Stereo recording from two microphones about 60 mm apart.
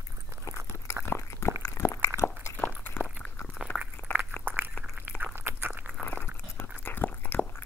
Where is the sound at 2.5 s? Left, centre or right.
Left.